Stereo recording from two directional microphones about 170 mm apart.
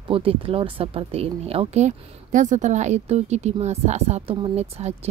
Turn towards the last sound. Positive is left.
turn(degrees=-40)  # may be behind; listen again after turning